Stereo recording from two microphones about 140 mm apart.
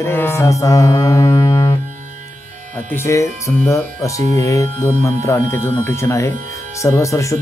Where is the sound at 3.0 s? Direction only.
20° left (ahead or behind).